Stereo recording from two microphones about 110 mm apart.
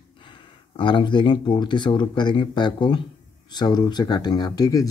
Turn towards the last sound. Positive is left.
turn(degrees=35)  # may be behind; listen again after turning